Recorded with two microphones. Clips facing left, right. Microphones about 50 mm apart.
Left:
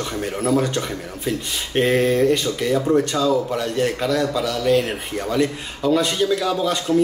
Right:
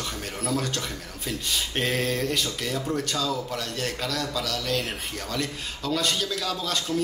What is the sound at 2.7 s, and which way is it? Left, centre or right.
Speech, left.